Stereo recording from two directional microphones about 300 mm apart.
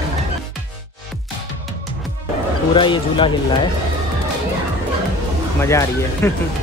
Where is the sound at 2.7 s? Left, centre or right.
Centre.